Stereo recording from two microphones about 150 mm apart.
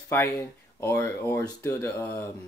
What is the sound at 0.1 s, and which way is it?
Speech, 15° left (ahead or behind).